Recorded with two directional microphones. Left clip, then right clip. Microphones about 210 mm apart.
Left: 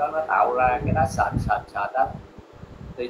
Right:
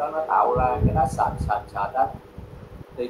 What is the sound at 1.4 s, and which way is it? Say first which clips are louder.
Speech: left 1 dB; 20° left (ahead or behind).